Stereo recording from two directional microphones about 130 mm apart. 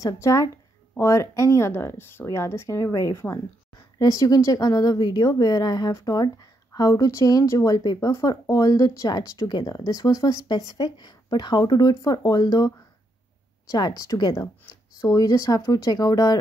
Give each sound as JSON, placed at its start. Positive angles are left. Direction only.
{"t": 0.0, "sound": "a woman's voice", "side_deg": 25}